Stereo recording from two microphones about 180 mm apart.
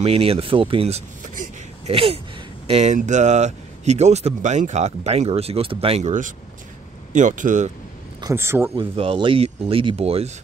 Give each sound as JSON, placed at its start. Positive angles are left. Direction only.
{"t": 0.0, "sound": "speech", "side_deg": -30}
{"t": 8.2, "sound": "speech", "side_deg": -15}
{"t": 8.7, "sound": "speech", "side_deg": -30}